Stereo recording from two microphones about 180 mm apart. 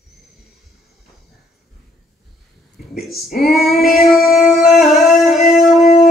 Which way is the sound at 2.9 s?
Centre (ahead or behind).